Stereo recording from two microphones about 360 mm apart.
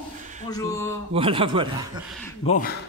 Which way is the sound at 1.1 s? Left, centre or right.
Centre.